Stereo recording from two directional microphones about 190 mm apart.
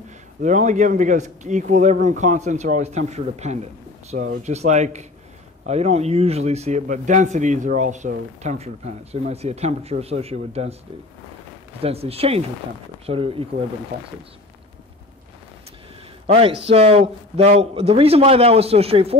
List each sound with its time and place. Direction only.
0.4 s a man's voice: 40° right (ahead or behind)
11.8 s a man's voice: 30° right (ahead or behind)
16.3 s a man's voice: 30° right (ahead or behind)